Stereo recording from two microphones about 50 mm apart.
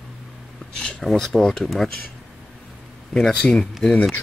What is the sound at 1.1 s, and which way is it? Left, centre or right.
Speech, centre.